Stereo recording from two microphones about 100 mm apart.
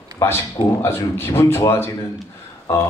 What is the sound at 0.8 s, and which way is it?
A man's voice, 25° left (ahead or behind).